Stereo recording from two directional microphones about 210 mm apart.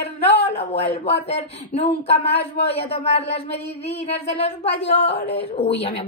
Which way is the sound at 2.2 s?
55° left (ahead or behind).